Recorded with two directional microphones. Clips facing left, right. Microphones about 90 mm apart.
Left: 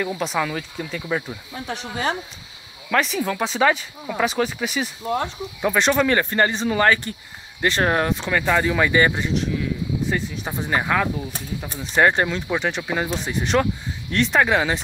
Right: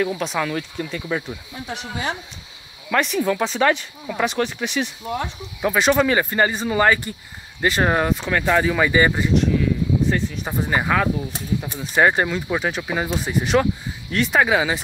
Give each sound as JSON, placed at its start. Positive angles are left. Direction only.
{"t": 0.0, "sound": "speech", "side_deg": 0}
{"t": 1.7, "sound": "speech", "side_deg": 40}
{"t": 2.9, "sound": "speech", "side_deg": 0}
{"t": 5.0, "sound": "speech", "side_deg": 40}
{"t": 5.6, "sound": "speech", "side_deg": -5}